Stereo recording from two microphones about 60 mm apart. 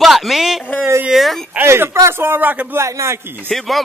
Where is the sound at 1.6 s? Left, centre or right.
Right.